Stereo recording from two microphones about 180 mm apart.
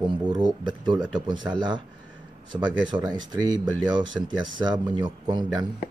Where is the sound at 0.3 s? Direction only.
25° right (ahead or behind).